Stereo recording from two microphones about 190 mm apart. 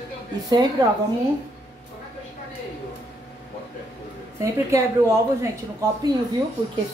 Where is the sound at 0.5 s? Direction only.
20° right (ahead or behind).